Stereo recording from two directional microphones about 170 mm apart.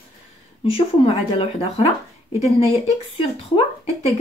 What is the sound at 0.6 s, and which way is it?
Speech, 35° left (ahead or behind).